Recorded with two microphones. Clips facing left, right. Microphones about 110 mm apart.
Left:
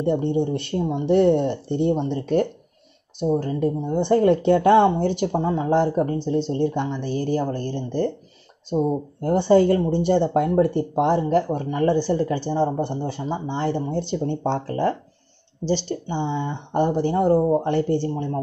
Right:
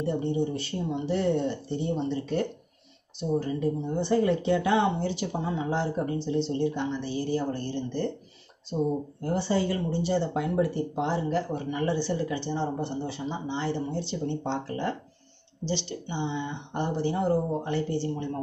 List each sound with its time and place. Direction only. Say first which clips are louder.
0.0 s speech: left 6 dB; 60° left (ahead or behind)
9.2 s speech: left 11 dB; 55° left (ahead or behind)
18.1 s speech: left 6 dB; 35° left (ahead or behind)